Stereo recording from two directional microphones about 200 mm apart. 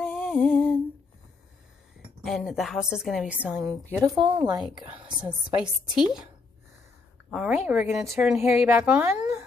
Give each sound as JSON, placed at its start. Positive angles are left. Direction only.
{"t": 0.0, "sound": "a sound", "side_deg": 0}
{"t": 2.2, "sound": "a woman's voice", "side_deg": 0}
{"t": 4.0, "sound": "a woman's voice", "side_deg": -20}
{"t": 7.2, "sound": "a woman's voice", "side_deg": -5}